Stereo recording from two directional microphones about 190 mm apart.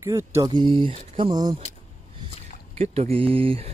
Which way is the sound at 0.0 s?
15° right (ahead or behind).